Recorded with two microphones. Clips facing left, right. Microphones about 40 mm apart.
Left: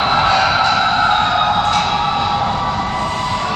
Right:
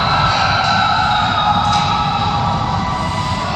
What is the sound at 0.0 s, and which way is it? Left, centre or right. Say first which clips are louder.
Vehicle: even; centre.